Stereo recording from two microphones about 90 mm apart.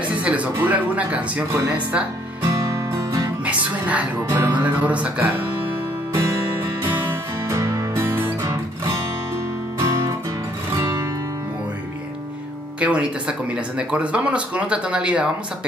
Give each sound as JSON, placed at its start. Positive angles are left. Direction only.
{"t": 0.2, "sound": "speech", "side_deg": -15}
{"t": 2.5, "sound": "music", "side_deg": -35}
{"t": 3.4, "sound": "music", "side_deg": -15}
{"t": 4.3, "sound": "speech", "side_deg": -20}
{"t": 6.1, "sound": "music", "side_deg": -25}
{"t": 10.8, "sound": "music", "side_deg": -30}
{"t": 12.8, "sound": "speech", "side_deg": -15}